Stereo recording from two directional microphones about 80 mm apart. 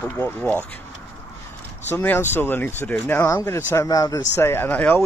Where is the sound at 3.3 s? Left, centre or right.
Left.